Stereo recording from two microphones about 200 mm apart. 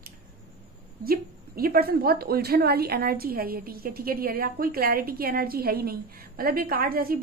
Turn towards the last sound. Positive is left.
turn(degrees=-50)  # may be behind; listen again after turning